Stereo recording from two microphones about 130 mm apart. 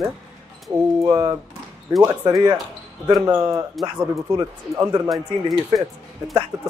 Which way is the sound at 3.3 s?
25° right (ahead or behind).